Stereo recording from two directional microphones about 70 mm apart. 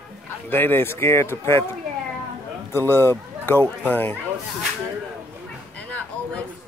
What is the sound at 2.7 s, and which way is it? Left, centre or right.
Speech, left.